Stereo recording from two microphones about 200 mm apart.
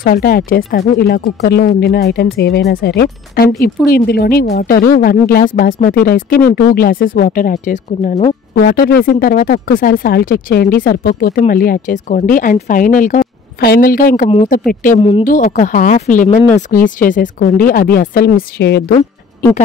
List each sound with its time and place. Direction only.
0.0 s speech: 45° left (ahead or behind)
8.5 s speech: 50° left (ahead or behind)